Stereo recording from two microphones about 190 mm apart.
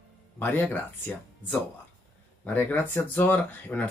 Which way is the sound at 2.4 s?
10° left (ahead or behind).